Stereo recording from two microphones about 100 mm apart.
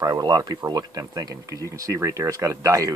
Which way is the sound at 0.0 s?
40° right (ahead or behind).